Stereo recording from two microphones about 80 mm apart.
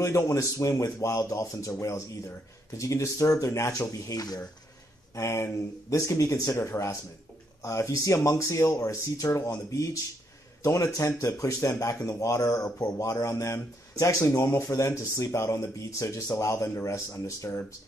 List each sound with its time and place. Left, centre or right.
0.0 s speech: left
5.1 s speech: left